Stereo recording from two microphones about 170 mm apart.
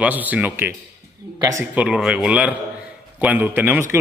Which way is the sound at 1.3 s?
20° right (ahead or behind).